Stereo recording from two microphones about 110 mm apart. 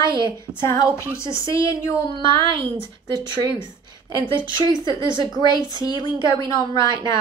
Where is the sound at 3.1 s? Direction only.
45° right (ahead or behind).